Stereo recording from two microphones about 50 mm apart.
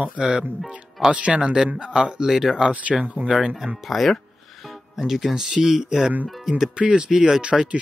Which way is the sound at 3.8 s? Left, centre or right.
Centre.